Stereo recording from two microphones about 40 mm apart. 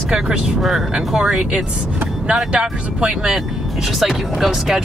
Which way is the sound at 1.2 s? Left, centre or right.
Right.